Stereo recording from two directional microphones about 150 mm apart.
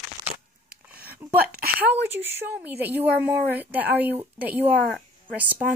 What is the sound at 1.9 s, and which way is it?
Speech, 15° right (ahead or behind).